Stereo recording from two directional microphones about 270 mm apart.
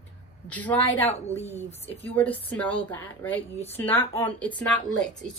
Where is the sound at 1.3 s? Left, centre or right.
Left.